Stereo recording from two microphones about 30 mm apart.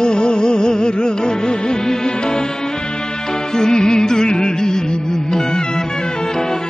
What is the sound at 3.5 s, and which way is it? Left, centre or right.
Music, left.